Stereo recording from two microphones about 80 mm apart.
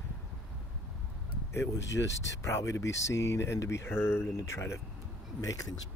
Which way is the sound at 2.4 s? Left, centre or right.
Left.